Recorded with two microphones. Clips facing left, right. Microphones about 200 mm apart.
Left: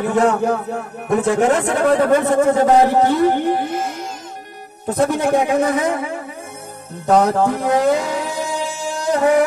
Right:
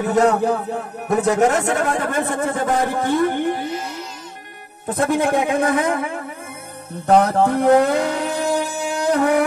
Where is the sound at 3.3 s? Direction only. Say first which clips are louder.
Left 3 dB; 50° left (ahead or behind).